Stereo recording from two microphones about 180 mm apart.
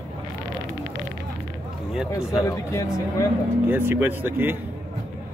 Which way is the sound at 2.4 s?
15° left (ahead or behind).